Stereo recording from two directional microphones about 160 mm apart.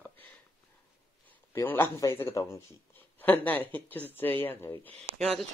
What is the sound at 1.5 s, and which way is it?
Speech, 15° left (ahead or behind).